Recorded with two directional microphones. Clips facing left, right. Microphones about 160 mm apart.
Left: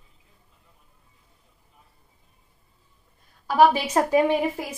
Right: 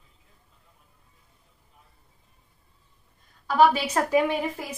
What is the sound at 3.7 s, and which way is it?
Speech, 25° left (ahead or behind).